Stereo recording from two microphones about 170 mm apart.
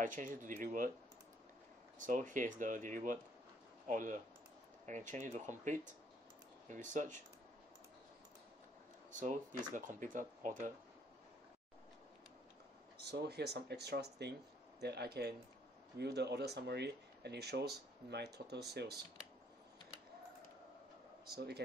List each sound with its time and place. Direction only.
0.0 s speech: 50° right (ahead or behind)
2.0 s speech: 50° right (ahead or behind)
9.1 s speech: 45° right (ahead or behind)
12.9 s speech: 70° right (ahead or behind)